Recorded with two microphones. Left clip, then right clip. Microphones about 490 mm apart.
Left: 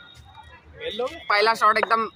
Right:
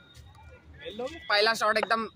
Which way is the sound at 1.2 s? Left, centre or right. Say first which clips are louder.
Left 6 dB; right.